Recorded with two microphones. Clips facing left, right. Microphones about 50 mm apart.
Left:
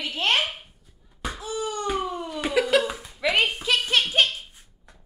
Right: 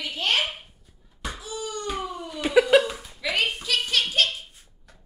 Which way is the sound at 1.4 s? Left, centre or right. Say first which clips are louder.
Left 5 dB; left.